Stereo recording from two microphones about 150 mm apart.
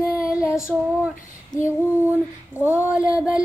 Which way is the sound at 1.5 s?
55° left (ahead or behind).